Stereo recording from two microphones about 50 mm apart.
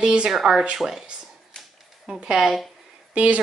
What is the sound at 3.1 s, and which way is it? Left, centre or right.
Speech, right.